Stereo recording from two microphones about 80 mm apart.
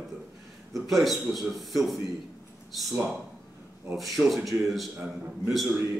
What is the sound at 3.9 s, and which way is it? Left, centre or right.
Speech, centre.